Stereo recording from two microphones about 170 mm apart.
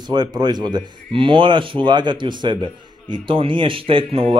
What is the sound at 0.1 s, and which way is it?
Speech, 25° right (ahead or behind).